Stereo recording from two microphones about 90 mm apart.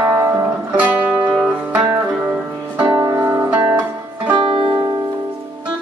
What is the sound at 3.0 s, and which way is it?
Music, 35° right (ahead or behind).